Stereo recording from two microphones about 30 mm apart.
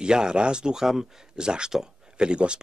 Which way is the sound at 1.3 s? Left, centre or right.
Right.